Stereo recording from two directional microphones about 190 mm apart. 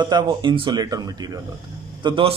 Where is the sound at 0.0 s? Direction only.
25° right (ahead or behind).